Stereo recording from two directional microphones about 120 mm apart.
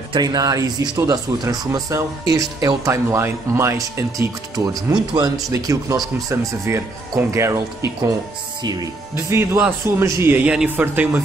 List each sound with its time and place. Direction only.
0.1 s speech: 35° right (ahead or behind)
9.1 s speech: 20° right (ahead or behind)